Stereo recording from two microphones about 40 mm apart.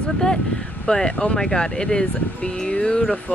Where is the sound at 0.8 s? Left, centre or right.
Centre.